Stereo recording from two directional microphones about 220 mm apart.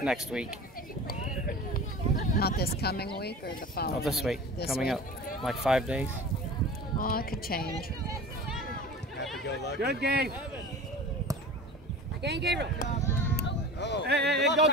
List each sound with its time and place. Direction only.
0.0 s speech: centre (ahead or behind)
1.0 s speech: 40° left (ahead or behind)
4.0 s speech: centre (ahead or behind)
7.0 s speech: 40° left (ahead or behind)
9.4 s speech: 50° left (ahead or behind)
9.8 s speech: 45° right (ahead or behind)
12.2 s speech: 50° right (ahead or behind)
13.0 s a sound: 10° left (ahead or behind)
13.4 s a sound: 50° left (ahead or behind)
14.0 s speech: 50° right (ahead or behind)